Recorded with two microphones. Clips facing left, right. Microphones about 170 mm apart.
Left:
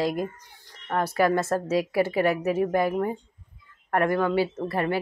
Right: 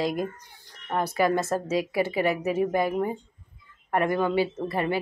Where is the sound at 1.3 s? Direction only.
10° left (ahead or behind).